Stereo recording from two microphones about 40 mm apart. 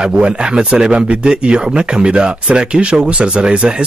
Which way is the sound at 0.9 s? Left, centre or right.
Right.